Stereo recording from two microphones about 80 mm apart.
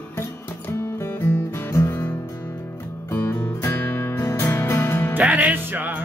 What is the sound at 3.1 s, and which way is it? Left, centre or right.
Music, left.